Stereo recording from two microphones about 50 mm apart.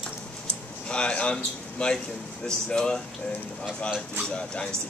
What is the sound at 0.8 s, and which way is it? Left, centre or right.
Speech, left.